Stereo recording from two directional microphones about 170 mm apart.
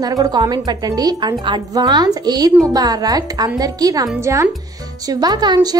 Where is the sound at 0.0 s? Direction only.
20° right (ahead or behind).